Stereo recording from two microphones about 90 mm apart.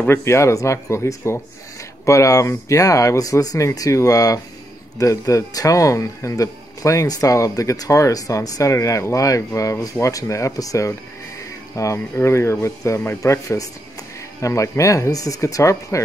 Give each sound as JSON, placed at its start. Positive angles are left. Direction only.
{"t": 0.1, "sound": "speech", "side_deg": 30}